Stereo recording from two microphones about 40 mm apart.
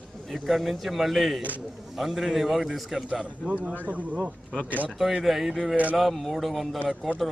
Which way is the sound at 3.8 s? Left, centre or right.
Right.